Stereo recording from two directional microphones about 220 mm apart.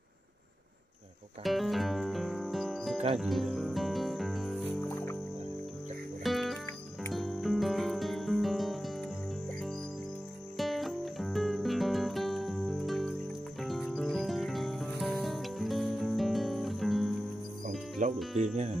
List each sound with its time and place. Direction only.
1.4 s music: centre (ahead or behind)
6.2 s music: centre (ahead or behind)
10.6 s music: centre (ahead or behind)
17.6 s cricket: 35° right (ahead or behind)
18.4 s speech: 30° right (ahead or behind)